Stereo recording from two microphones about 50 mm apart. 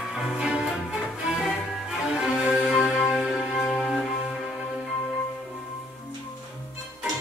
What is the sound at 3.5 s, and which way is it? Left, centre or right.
Music, centre.